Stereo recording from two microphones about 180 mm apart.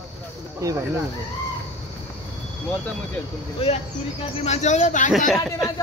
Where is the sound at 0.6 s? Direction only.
20° right (ahead or behind).